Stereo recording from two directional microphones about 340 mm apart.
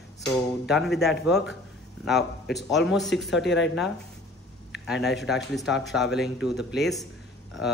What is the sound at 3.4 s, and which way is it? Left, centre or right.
Speech, left.